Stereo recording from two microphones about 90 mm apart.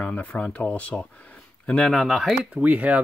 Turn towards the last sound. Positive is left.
turn(degrees=-15)  # may be behind; listen again after turning